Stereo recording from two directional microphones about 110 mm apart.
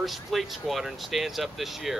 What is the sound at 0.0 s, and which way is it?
Speech, centre (ahead or behind).